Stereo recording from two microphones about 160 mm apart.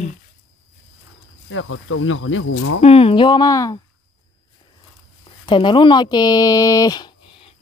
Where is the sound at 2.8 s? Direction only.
35° left (ahead or behind).